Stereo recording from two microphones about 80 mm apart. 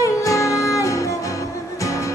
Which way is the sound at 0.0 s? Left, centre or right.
Left.